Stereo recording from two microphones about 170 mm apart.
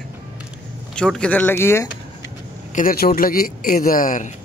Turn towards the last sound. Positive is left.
turn(degrees=50)  # may be behind; listen again after turning